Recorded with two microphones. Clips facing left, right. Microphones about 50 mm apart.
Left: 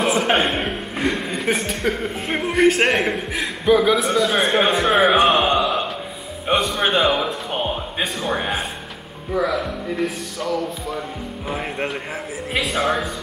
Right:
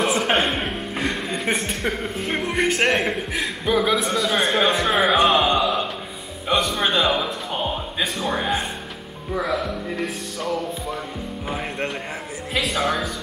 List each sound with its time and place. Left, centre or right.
0.0 s a man's voice: centre
5.3 s a sound: centre
6.4 s a man's voice: centre
7.1 s a man's voice: centre